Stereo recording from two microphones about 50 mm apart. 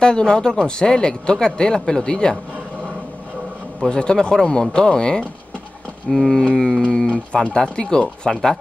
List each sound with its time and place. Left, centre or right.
0.0 s speech: centre
3.9 s speech: centre
8.3 s speech: centre